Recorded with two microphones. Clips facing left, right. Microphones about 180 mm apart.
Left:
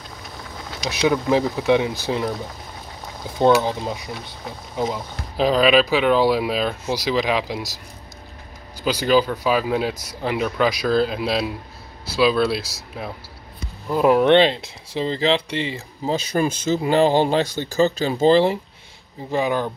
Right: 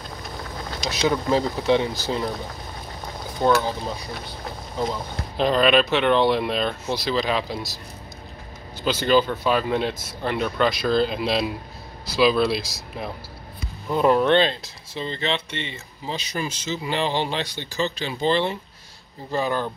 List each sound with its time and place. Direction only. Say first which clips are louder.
0.8 s speech: left 3 dB; 10° left (ahead or behind)
3.3 s a sound: left 1 dB; 25° left (ahead or behind)
3.6 s speech: left 3 dB; 20° left (ahead or behind)
5.4 s speech: left 2 dB; 5° left (ahead or behind)
8.8 s speech: left 1 dB; 5° left (ahead or behind)
14.2 s speech: left 4 dB; 25° left (ahead or behind)
19.3 s speech: left 3 dB; 15° left (ahead or behind)